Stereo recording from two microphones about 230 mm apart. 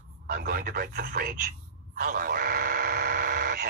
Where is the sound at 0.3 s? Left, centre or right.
Right.